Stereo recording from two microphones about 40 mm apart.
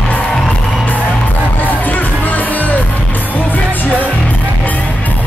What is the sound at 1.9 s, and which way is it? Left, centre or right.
Music, left.